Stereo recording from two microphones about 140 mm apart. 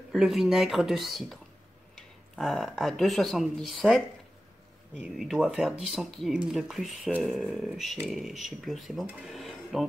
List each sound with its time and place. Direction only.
0.1 s speech: centre (ahead or behind)
5.1 s speech: centre (ahead or behind)